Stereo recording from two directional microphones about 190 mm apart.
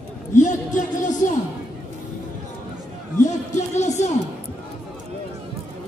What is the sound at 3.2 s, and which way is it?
Music, 40° left (ahead or behind).